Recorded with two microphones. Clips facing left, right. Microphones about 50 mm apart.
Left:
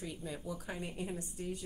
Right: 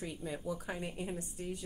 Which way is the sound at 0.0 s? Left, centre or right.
Centre.